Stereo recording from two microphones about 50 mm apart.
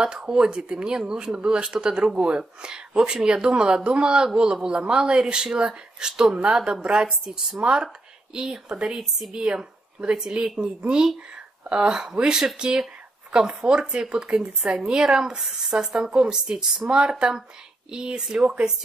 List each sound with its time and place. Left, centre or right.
0.0 s speech: centre